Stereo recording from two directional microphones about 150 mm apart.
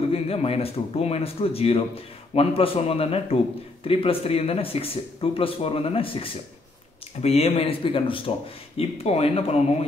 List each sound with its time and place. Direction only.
0.1 s a man's voice: 40° left (ahead or behind)